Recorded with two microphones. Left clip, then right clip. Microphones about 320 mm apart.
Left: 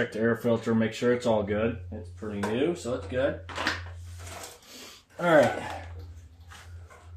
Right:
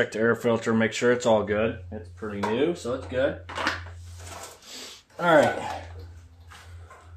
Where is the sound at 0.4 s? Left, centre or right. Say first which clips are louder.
Right 3 dB; right.